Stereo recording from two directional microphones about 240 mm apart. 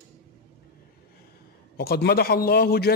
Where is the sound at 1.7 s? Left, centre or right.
Left.